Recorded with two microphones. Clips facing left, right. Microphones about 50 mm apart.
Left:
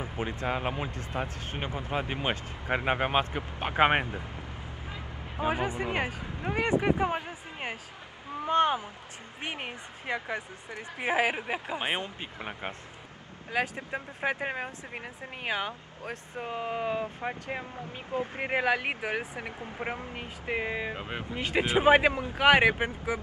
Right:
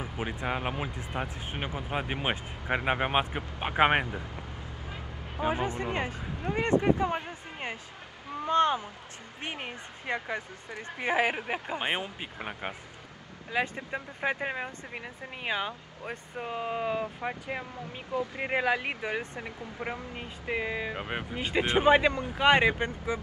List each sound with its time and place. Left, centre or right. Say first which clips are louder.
0.0 s speech: left 1 dB; centre
5.5 s speech: left 1 dB; centre
12.0 s speech: even; centre
13.7 s speech: even; centre
16.0 s speech: even; centre
18.1 s speech: even; left
20.4 s speech: even; centre
21.0 s speech: right 2 dB; right
21.5 s speech: even; centre
21.8 s speech: left 2 dB; centre